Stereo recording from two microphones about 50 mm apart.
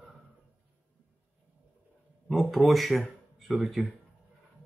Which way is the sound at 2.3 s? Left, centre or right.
Centre.